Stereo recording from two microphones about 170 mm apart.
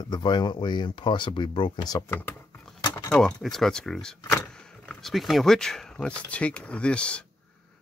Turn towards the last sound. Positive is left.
turn(degrees=5)  # may be behind; listen again after turning